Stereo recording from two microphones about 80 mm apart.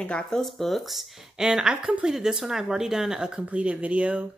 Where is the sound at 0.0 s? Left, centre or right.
Centre.